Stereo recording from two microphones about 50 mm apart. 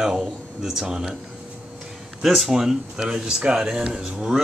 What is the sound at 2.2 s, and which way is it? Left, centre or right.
A man's voice, centre.